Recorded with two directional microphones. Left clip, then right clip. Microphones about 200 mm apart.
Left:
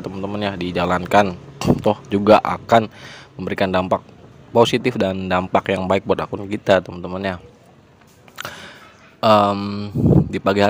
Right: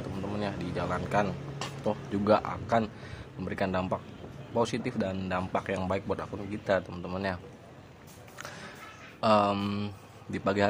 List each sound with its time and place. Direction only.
0.0 s speech: 40° left (ahead or behind)
6.9 s speech: 30° left (ahead or behind)
8.4 s music: 40° left (ahead or behind)
9.2 s speech: 35° left (ahead or behind)
10.3 s speech: 35° left (ahead or behind)